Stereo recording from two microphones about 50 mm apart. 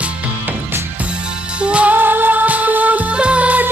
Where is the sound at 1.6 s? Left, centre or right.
Right.